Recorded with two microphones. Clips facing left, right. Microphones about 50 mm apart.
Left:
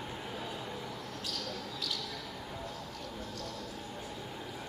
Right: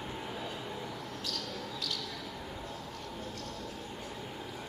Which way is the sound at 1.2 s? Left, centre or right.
Centre.